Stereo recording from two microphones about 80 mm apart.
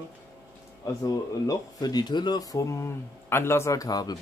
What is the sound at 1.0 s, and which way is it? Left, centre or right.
Speech, left.